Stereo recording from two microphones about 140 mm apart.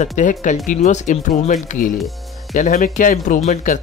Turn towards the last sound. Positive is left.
turn(degrees=60)  # may be behind; listen again after turning